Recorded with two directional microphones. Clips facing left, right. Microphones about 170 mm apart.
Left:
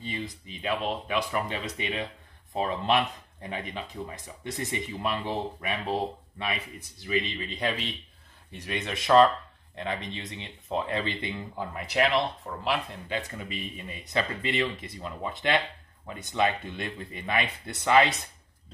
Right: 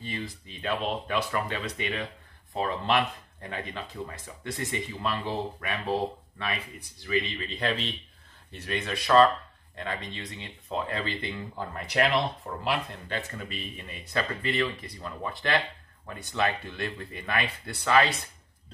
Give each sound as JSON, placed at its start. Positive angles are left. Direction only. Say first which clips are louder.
{"t": 0.0, "sound": "speech", "louder": "left 1 dB", "side_deg": 15}
{"t": 11.5, "sound": "speech", "louder": "even", "side_deg": 5}
{"t": 13.1, "sound": "speech", "louder": "left 2 dB", "side_deg": 15}